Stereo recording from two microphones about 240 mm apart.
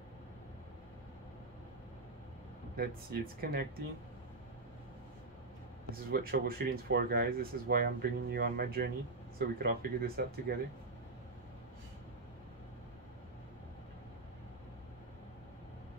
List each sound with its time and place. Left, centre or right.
2.7 s speech: right
5.9 s speech: right